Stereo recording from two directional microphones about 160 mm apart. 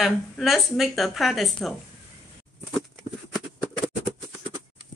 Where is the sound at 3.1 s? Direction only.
35° right (ahead or behind).